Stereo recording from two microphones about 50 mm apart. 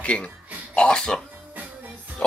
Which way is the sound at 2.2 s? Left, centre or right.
Left.